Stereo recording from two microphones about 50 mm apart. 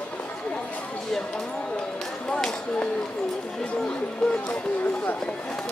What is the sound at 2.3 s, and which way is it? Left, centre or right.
Chop, left.